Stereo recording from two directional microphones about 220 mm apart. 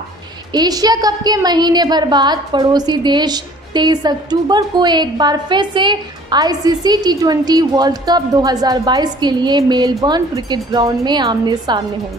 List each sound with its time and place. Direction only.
0.5 s a woman's voice: 15° right (ahead or behind)